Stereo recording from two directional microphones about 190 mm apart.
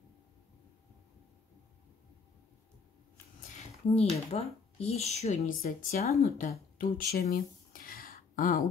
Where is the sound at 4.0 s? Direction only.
35° left (ahead or behind).